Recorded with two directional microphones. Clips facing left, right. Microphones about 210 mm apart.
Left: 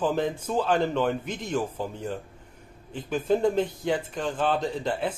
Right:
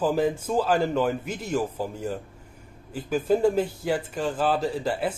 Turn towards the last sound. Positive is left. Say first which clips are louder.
# right 2 dB
turn(degrees=-5)  # may be behind; listen again after turning